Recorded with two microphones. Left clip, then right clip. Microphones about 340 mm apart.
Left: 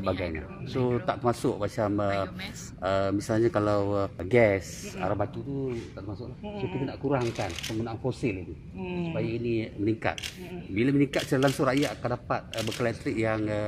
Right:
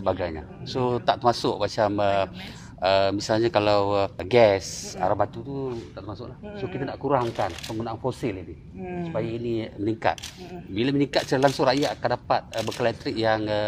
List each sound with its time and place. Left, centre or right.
0.0 s speech: right
6.9 s speech: right